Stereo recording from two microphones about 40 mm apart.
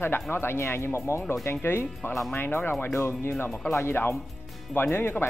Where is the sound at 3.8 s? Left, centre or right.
Left.